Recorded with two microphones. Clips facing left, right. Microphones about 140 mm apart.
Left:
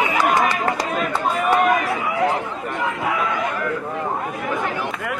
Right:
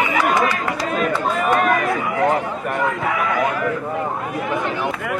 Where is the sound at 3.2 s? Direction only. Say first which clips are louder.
Right 3 dB; centre (ahead or behind).